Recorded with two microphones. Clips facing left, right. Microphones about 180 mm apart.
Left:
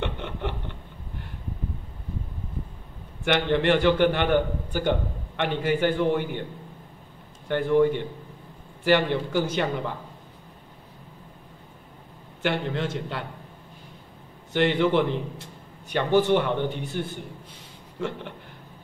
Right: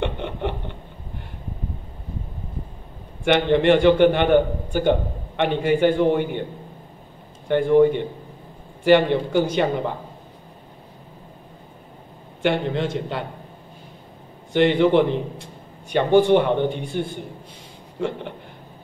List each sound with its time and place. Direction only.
0.0 s a sound: 20° right (ahead or behind)
3.3 s a man's voice: 20° right (ahead or behind)
7.4 s a man's voice: 20° right (ahead or behind)
12.4 s a man's voice: 20° right (ahead or behind)
14.5 s a man's voice: 20° right (ahead or behind)